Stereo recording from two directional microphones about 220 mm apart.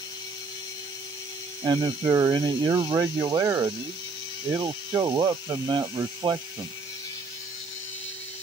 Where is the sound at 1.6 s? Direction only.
20° right (ahead or behind).